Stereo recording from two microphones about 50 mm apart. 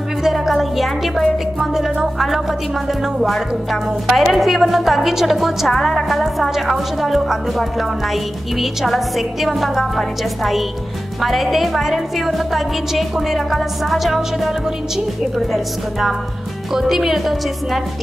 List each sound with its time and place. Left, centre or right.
0.2 s music: centre
3.2 s a woman's voice: centre
5.7 s a woman's voice: centre